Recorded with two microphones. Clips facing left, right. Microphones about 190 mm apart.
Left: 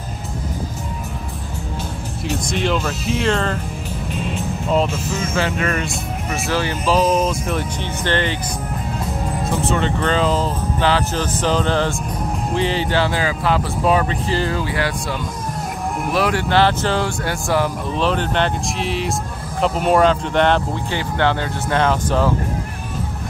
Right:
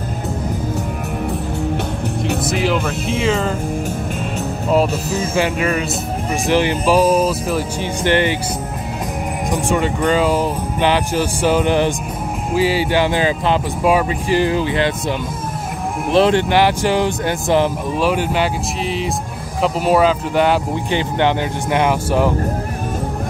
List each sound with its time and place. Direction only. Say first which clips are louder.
2.5 s speech: even; 5° right (ahead or behind)
5.3 s speech: right 3 dB; 10° right (ahead or behind)
9.5 s speech: right 2 dB; 15° right (ahead or behind)
16.1 s speech: right 6 dB; 25° right (ahead or behind)
18.0 s speech: right 2 dB; 10° right (ahead or behind)
20.9 s speech: right 3 dB; 15° right (ahead or behind)